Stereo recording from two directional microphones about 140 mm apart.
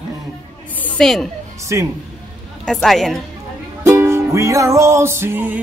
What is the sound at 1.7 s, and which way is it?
Speech, 20° right (ahead or behind).